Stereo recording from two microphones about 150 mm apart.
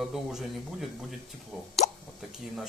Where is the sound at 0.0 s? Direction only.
Centre (ahead or behind).